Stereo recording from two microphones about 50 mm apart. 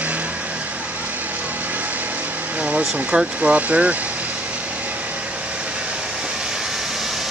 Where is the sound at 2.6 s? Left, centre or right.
Right.